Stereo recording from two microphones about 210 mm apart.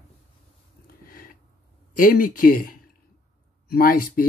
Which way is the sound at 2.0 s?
40° left (ahead or behind).